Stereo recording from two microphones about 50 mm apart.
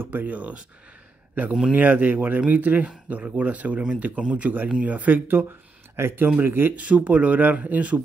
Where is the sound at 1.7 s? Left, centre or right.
Right.